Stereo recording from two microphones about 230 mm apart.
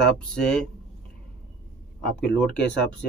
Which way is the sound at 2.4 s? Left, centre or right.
Centre.